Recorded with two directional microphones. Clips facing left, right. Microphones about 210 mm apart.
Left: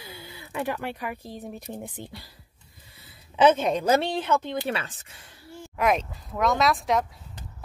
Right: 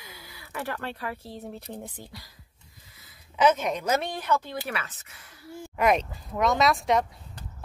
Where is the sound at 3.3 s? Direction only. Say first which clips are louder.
Left 3 dB; 30° left (ahead or behind).